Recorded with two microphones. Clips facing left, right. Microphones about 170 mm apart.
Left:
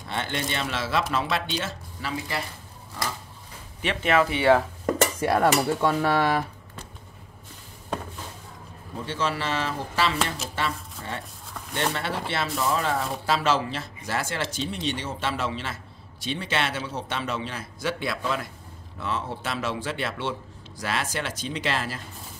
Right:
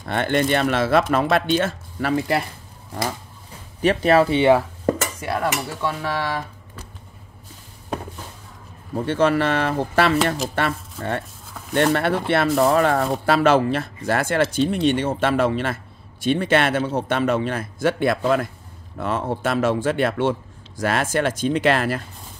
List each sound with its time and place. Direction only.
0.0 s speech: 55° right (ahead or behind)
3.8 s speech: 40° right (ahead or behind)
4.9 s stir: 35° left (ahead or behind)
5.9 s speech: 40° left (ahead or behind)
8.9 s a man's voice: 55° right (ahead or behind)